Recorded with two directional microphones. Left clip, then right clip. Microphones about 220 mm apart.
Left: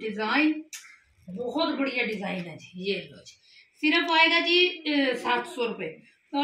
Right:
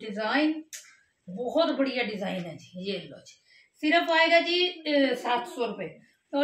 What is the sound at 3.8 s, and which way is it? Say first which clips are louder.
A woman's voice: left 1 dB; 25° right (ahead or behind).